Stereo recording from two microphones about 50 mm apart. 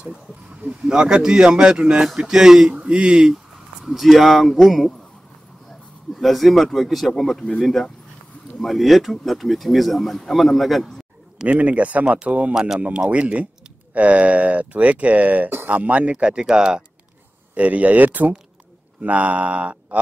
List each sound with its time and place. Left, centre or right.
0.6 s speech: centre
2.7 s speech: centre
3.8 s speech: centre
6.1 s speech: centre
11.4 s speech: right
12.5 s speech: centre
12.8 s speech: right
17.6 s speech: right
18.9 s mantra: right